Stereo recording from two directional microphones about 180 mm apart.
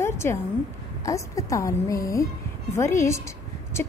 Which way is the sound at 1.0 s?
20° left (ahead or behind).